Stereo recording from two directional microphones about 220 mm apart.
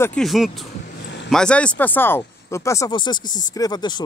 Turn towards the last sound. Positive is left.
turn(degrees=20)  # may be behind; listen again after turning